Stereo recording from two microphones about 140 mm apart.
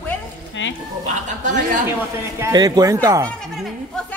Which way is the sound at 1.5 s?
65° right (ahead or behind).